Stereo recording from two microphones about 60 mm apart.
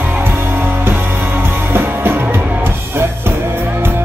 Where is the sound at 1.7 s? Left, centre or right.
Right.